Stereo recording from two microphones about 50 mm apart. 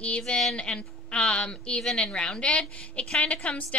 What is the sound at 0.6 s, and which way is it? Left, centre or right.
A woman's voice, left.